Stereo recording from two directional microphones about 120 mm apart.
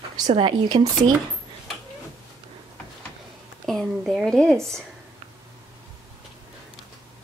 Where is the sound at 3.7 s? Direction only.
Centre (ahead or behind).